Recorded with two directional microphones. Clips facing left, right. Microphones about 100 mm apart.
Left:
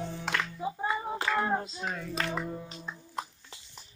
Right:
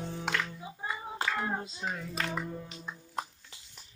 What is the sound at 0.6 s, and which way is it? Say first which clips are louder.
Music: left 7 dB; 40° left (ahead or behind).